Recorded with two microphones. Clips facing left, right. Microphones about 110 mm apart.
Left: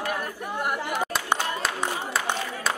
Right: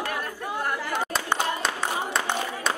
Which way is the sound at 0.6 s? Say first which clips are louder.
Left 2 dB; 15° left (ahead or behind).